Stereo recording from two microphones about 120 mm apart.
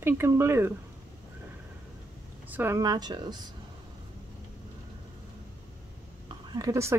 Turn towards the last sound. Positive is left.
turn(degrees=-30)  # may be behind; listen again after turning